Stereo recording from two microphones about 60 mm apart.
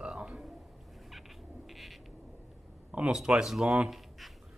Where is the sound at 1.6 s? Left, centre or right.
Centre.